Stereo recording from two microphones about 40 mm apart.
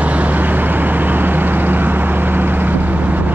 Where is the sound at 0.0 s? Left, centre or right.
Right.